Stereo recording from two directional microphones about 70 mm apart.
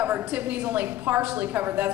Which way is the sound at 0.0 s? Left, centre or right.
Right.